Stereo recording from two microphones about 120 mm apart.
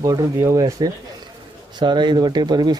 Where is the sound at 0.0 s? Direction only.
30° right (ahead or behind).